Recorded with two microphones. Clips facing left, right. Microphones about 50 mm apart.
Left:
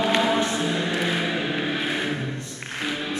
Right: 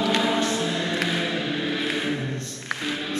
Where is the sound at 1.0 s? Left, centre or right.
Centre.